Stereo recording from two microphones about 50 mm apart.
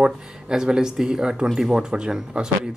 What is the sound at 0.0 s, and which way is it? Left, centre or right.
Speech, centre.